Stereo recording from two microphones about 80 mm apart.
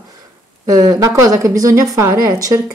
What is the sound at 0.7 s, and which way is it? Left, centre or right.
A woman's voice, right.